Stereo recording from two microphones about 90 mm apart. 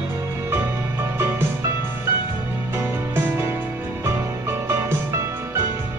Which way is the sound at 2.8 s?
30° right (ahead or behind).